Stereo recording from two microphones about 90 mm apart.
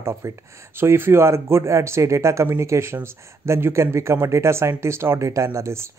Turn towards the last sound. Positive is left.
turn(degrees=-30)  # may be behind; listen again after turning